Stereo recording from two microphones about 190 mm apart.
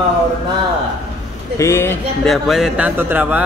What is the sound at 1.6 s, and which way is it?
Speech, 15° left (ahead or behind).